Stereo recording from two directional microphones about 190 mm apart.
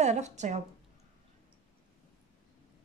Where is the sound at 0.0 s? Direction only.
35° right (ahead or behind).